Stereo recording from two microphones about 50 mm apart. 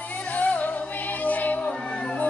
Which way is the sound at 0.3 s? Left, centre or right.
Left.